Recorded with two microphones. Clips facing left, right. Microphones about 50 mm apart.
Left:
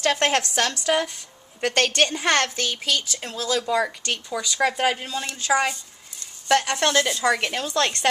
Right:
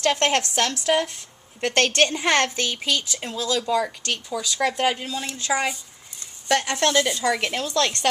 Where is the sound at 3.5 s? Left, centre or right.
Centre.